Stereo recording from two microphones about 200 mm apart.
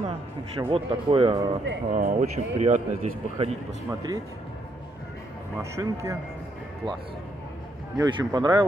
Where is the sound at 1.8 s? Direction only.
35° right (ahead or behind).